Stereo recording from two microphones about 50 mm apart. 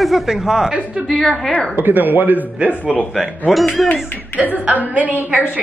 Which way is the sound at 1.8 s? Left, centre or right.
Right.